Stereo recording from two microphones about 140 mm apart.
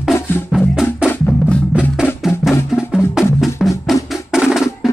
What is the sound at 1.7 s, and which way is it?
Music, 10° right (ahead or behind).